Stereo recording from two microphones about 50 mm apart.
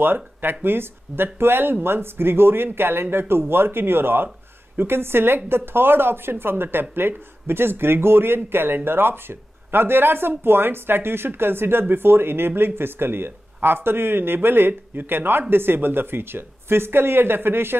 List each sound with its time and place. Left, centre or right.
0.0 s a woman's voice: right